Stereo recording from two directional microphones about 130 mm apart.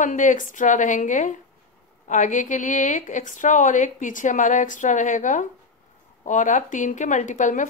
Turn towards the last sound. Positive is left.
turn(degrees=70)  # may be behind; listen again after turning